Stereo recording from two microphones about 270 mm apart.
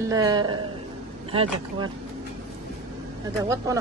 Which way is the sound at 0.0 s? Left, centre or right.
Centre.